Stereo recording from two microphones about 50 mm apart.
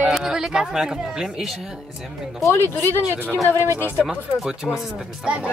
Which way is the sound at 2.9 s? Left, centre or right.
Left.